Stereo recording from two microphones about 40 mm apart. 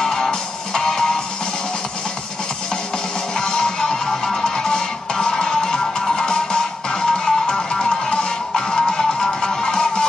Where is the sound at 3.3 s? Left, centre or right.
Centre.